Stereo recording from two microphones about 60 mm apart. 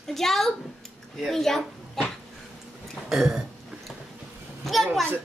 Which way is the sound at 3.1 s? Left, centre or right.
Centre.